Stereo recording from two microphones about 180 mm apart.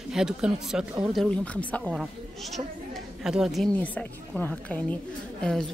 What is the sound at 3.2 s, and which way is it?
Speech, 5° right (ahead or behind).